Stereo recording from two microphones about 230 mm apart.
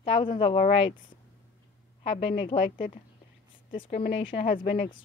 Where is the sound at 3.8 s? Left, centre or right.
Left.